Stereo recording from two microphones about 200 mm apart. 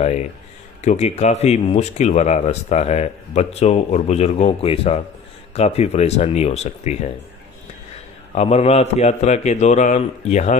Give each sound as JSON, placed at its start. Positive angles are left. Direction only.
{"t": 0.0, "sound": "speech", "side_deg": 35}
{"t": 8.4, "sound": "speech", "side_deg": 30}